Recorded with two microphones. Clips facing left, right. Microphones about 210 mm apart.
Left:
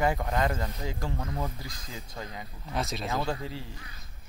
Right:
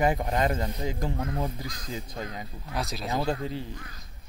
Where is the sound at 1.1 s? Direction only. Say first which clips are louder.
Right 3 dB; 55° right (ahead or behind).